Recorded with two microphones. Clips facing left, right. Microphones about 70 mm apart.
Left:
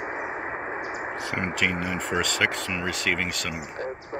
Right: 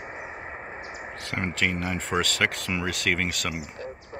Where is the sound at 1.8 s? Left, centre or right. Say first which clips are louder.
Even; centre.